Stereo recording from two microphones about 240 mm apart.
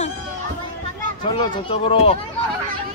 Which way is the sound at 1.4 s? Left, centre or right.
Left.